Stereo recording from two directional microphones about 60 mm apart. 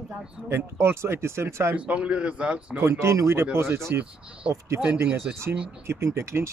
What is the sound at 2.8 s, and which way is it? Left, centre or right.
Speech, right.